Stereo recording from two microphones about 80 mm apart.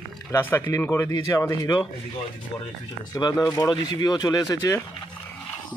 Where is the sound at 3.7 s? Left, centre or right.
Left.